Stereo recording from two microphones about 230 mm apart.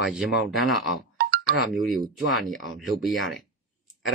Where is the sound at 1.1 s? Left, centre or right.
Right.